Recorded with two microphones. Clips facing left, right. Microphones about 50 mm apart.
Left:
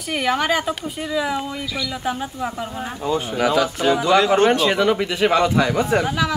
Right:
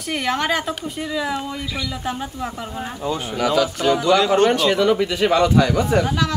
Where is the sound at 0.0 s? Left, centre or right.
Centre.